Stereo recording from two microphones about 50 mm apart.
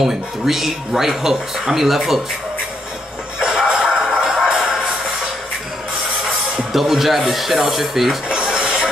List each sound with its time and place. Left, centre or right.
0.0 s speech: centre
3.3 s music: centre
6.7 s speech: centre
8.3 s a sound: centre